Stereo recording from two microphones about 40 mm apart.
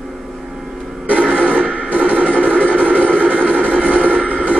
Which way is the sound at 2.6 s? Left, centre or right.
Right.